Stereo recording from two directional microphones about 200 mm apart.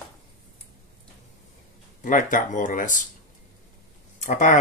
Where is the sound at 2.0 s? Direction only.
40° left (ahead or behind).